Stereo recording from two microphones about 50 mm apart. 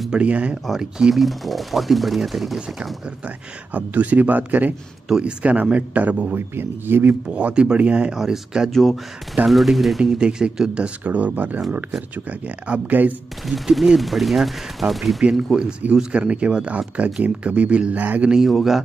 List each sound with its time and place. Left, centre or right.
0.1 s speech: right
0.7 s speech: centre
1.1 s speech: centre
3.7 s speech: right
6.3 s speech: right
7.2 s speech: right
8.2 s speech: centre
8.6 s speech: centre
11.1 s speech: right
13.5 s speech: centre
15.9 s speech: right
18.5 s speech: centre